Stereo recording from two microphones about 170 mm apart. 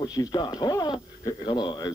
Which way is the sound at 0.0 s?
25° left (ahead or behind).